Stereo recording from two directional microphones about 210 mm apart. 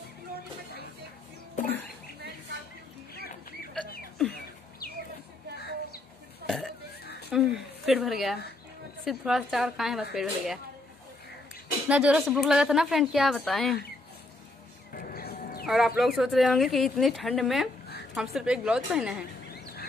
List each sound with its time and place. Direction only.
3.8 s a sound: 5° left (ahead or behind)
6.4 s burping: centre (ahead or behind)
7.2 s a sound: centre (ahead or behind)
9.0 s speech: centre (ahead or behind)
11.9 s speech: 5° right (ahead or behind)
15.0 s music: 45° left (ahead or behind)
15.6 s speech: centre (ahead or behind)